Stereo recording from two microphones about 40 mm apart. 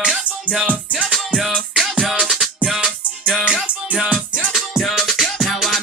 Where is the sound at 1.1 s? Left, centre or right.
Centre.